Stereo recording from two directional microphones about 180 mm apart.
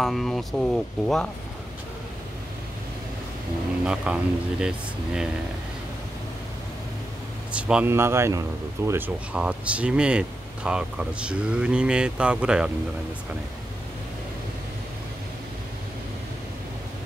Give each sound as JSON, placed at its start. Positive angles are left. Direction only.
{"t": 0.0, "sound": "speech", "side_deg": 0}
{"t": 3.8, "sound": "speech", "side_deg": -5}
{"t": 7.5, "sound": "speech", "side_deg": -5}